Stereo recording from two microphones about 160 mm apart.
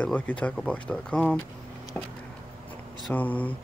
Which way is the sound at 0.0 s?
10° left (ahead or behind).